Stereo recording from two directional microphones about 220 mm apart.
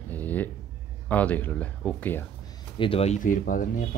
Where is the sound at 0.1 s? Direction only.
5° left (ahead or behind).